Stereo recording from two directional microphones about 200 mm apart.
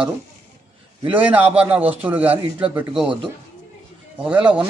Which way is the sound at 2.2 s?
25° right (ahead or behind).